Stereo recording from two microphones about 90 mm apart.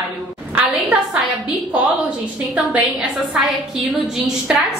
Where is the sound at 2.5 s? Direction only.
15° right (ahead or behind).